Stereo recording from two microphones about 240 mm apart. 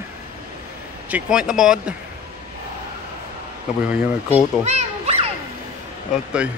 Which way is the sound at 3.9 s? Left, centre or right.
Centre.